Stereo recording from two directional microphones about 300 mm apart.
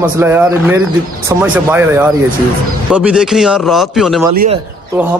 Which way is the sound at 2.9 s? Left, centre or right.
Centre.